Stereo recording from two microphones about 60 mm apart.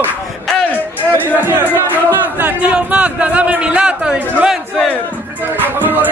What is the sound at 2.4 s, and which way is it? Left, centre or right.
A man's voice, right.